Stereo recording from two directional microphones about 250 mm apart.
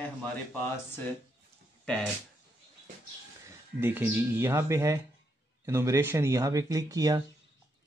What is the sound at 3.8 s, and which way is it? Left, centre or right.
Speech, centre.